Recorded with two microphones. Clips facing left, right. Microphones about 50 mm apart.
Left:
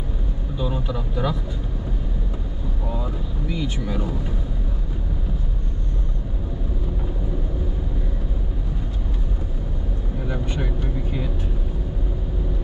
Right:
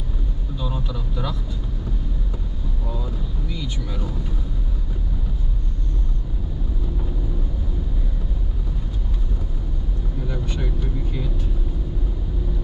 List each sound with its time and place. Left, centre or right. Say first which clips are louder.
0.6 s vehicle: left 4 dB; left
2.9 s speech: left 2 dB; left
10.2 s speech: left 2 dB; left